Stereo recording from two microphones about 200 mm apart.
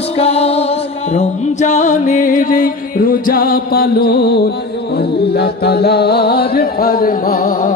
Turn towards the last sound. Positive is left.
turn(degrees=45)  # may be behind; listen again after turning